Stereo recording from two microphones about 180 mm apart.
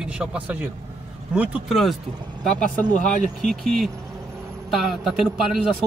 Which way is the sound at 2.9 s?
45° left (ahead or behind).